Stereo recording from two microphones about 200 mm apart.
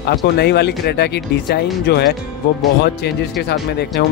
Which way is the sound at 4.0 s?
55° left (ahead or behind).